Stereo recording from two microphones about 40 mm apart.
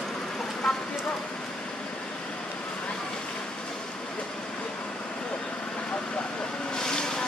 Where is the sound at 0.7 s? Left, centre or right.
Centre.